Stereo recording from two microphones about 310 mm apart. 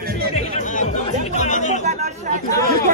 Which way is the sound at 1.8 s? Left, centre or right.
Right.